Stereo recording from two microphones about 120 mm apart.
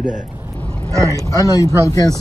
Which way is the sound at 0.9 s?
25° right (ahead or behind).